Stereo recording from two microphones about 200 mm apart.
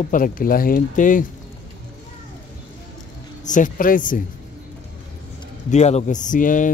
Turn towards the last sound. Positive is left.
turn(degrees=40)  # may be behind; listen again after turning